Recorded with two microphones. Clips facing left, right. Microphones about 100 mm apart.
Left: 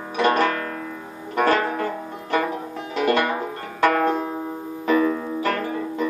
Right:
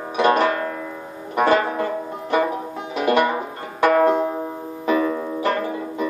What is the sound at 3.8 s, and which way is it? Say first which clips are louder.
Banjo: right 3 dB; 20° right (ahead or behind).